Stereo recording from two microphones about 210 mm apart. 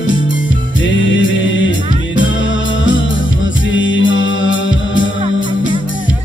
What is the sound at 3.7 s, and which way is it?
Music, 65° left (ahead or behind).